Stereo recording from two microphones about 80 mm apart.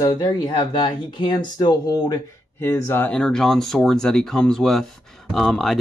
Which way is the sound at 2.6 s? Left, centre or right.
Left.